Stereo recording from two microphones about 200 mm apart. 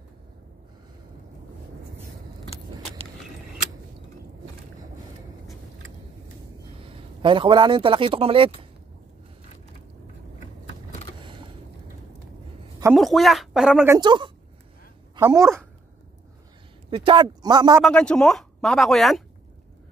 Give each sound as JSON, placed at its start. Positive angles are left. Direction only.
{"t": 6.9, "sound": "a man's voice", "side_deg": -25}
{"t": 12.9, "sound": "speech", "side_deg": 0}
{"t": 13.8, "sound": "speech", "side_deg": -20}
{"t": 16.9, "sound": "speech", "side_deg": -25}
{"t": 17.8, "sound": "speech", "side_deg": 5}